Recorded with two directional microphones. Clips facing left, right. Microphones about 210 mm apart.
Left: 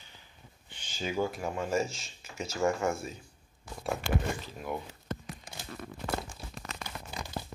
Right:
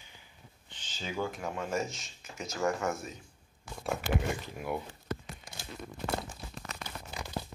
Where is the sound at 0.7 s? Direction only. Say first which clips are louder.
Left 5 dB; 10° left (ahead or behind).